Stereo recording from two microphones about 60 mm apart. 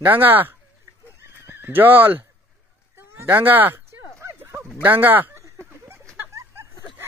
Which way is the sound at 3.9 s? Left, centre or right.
Right.